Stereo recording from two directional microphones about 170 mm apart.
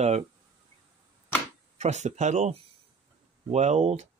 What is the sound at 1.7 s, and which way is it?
Speech, 40° right (ahead or behind).